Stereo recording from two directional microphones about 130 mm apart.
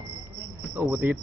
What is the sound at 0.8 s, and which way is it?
Speech, 15° right (ahead or behind).